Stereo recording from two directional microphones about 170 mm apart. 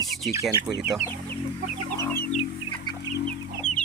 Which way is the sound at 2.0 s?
15° left (ahead or behind).